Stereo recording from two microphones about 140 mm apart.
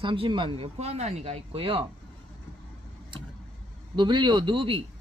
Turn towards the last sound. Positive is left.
turn(degrees=-40)  # may be behind; listen again after turning